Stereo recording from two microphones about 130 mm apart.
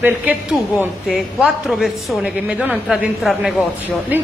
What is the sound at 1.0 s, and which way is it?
A woman's voice, centre (ahead or behind).